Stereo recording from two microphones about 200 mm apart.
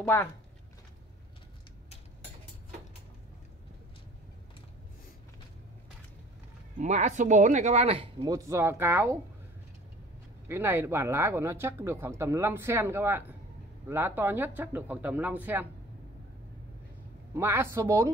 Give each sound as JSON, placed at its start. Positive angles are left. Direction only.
{"t": 0.0, "sound": "speech", "side_deg": 10}
{"t": 6.8, "sound": "speech", "side_deg": -35}
{"t": 10.5, "sound": "speech", "side_deg": -10}
{"t": 17.3, "sound": "speech", "side_deg": -10}